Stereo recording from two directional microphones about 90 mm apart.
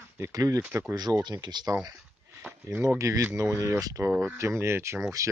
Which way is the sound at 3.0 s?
35° right (ahead or behind).